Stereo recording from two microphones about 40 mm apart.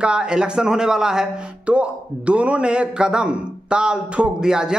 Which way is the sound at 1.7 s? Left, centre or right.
Right.